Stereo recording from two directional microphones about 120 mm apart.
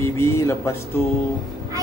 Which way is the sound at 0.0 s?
20° left (ahead or behind).